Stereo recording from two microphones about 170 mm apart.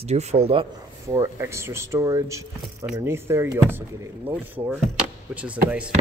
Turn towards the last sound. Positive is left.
turn(degrees=-5)  # may be behind; listen again after turning